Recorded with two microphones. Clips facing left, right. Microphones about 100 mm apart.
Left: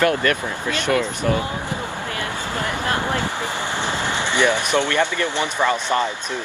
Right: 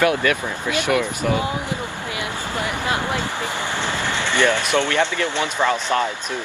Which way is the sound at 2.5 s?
15° right (ahead or behind).